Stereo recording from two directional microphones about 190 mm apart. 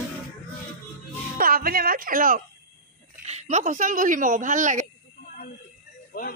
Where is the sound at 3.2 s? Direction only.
40° right (ahead or behind).